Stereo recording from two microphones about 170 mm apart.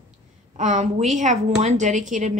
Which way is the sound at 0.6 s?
45° right (ahead or behind).